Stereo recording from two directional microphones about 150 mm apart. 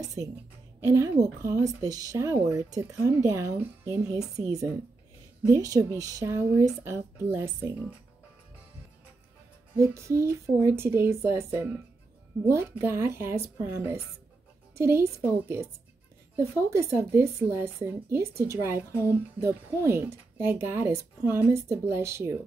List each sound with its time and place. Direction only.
0.0 s a woman's voice: 25° right (ahead or behind)
5.5 s a woman's voice: 25° right (ahead or behind)
9.8 s speech: 20° right (ahead or behind)